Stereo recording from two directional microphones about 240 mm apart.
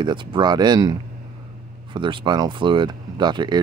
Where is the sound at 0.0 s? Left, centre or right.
Centre.